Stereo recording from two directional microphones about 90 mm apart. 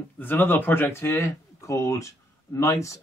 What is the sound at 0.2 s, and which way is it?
Speech, 20° left (ahead or behind).